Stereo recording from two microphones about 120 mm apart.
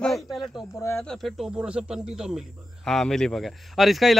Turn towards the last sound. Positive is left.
turn(degrees=0)  # may be behind; listen again after turning